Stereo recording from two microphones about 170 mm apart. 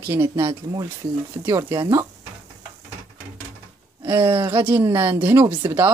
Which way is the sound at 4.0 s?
15° right (ahead or behind).